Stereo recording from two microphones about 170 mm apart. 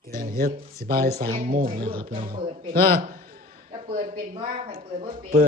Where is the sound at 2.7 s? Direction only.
60° right (ahead or behind).